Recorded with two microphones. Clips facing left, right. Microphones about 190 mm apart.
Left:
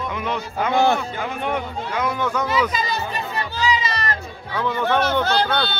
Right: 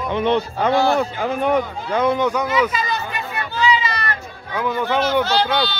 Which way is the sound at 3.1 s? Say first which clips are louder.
Even; 40° left (ahead or behind).